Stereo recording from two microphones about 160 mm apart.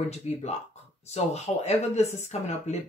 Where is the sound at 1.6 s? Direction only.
45° left (ahead or behind).